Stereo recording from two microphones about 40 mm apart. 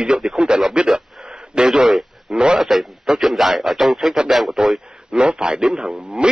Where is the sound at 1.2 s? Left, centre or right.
Right.